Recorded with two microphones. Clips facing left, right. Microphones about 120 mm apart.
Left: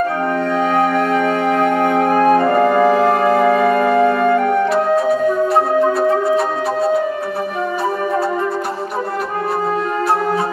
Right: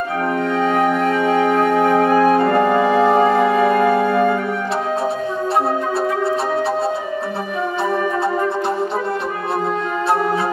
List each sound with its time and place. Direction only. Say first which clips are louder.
1.3 s music: even; 5° right (ahead or behind)
2.2 s music: left 2 dB; 30° left (ahead or behind)
3.3 s music: left 2 dB; centre (ahead or behind)